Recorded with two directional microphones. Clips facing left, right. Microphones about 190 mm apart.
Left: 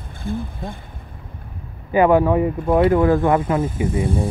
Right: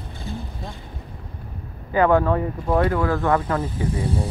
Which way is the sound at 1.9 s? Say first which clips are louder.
Left 3 dB; 15° left (ahead or behind).